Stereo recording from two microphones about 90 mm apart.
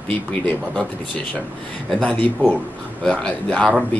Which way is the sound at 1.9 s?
10° left (ahead or behind).